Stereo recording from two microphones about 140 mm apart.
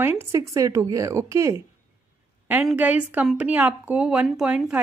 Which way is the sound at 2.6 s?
10° right (ahead or behind).